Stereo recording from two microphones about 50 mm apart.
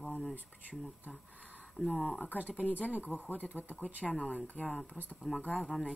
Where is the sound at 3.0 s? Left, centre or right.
Left.